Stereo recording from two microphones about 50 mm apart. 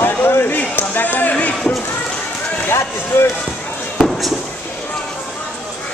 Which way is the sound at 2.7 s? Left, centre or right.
Left.